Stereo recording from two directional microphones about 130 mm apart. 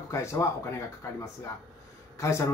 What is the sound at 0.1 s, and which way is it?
Speech, 20° left (ahead or behind).